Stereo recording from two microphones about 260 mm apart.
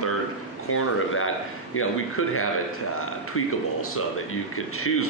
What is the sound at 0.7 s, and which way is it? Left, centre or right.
Speech, left.